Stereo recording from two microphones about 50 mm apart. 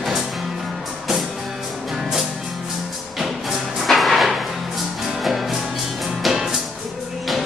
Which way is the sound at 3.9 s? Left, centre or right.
Centre.